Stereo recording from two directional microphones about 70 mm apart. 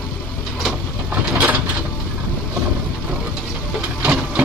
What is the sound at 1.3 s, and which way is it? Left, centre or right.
Mechanisms, centre.